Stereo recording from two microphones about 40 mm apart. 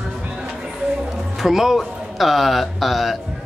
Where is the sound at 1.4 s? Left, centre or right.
Centre.